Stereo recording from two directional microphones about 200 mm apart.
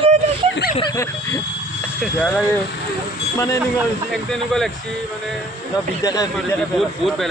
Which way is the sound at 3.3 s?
15° left (ahead or behind).